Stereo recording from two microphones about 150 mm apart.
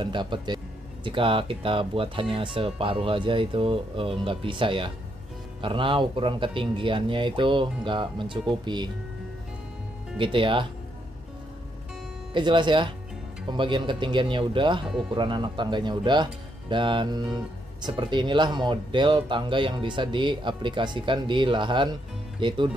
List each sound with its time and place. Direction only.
0.0 s speech: 30° right (ahead or behind)
10.1 s speech: 35° right (ahead or behind)
12.4 s speech: 30° right (ahead or behind)